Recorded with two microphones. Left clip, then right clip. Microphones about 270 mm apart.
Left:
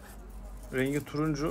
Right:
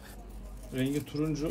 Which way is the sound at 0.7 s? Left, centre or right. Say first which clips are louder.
Left 2 dB; centre.